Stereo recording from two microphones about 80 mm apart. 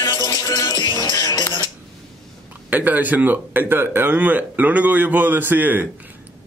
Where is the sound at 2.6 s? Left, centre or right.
Right.